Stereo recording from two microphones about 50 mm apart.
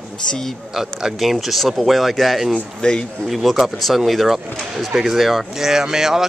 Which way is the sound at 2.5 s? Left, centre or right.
Centre.